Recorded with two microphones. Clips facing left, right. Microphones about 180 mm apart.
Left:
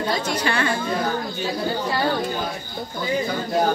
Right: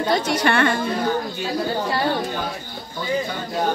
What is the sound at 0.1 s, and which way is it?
Speech, 55° right (ahead or behind).